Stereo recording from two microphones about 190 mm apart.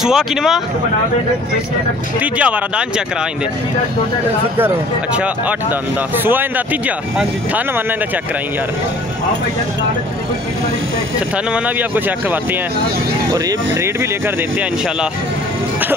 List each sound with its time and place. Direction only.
0.0 s speech: centre (ahead or behind)
2.1 s speech: 5° right (ahead or behind)
4.6 s speech: 10° right (ahead or behind)
11.5 s speech: 10° right (ahead or behind)